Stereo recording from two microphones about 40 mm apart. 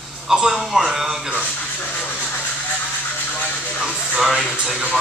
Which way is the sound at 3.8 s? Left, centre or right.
Centre.